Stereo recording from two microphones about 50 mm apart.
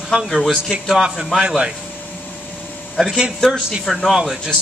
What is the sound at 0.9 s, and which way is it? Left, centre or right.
Speech, centre.